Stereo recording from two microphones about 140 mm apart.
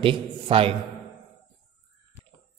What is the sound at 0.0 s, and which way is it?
Speech, 40° right (ahead or behind).